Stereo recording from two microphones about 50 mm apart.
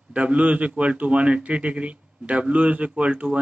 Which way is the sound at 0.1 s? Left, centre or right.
Right.